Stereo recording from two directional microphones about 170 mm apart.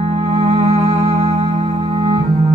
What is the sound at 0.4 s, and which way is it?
Music, 35° right (ahead or behind).